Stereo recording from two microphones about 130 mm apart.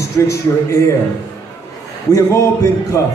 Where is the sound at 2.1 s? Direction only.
25° left (ahead or behind).